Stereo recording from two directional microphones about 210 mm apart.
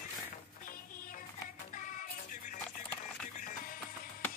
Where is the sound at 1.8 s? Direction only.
40° left (ahead or behind).